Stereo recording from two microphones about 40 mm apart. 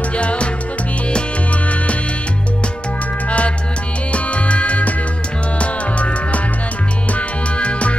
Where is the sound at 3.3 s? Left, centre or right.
Left.